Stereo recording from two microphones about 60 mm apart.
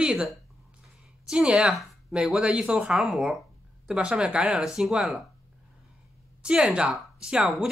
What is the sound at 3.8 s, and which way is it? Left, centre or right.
Speech, centre.